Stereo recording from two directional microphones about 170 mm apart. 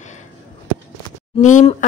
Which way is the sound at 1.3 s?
45° left (ahead or behind).